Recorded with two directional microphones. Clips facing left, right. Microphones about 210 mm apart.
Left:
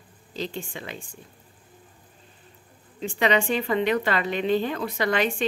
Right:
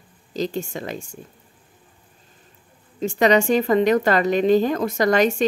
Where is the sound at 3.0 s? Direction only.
45° right (ahead or behind).